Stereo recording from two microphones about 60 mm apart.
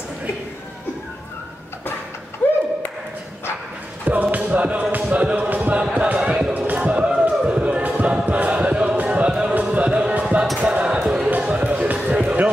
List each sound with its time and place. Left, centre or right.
2.4 s a sound: left
4.0 s music: right
5.1 s a sound: right
9.3 s music: centre
10.6 s basketball bounce: centre
11.2 s music: right